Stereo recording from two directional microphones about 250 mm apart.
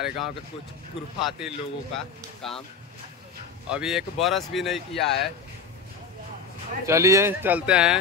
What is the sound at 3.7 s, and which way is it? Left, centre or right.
A man's voice, centre.